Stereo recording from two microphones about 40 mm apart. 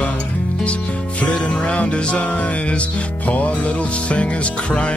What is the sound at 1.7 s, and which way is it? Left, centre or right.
Music, left.